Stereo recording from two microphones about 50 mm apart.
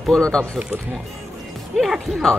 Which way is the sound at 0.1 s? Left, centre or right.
Centre.